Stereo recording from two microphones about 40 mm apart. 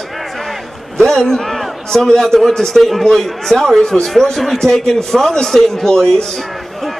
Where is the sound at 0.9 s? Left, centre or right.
Centre.